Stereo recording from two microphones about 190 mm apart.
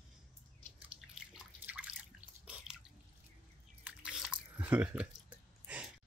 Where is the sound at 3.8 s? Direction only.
5° right (ahead or behind).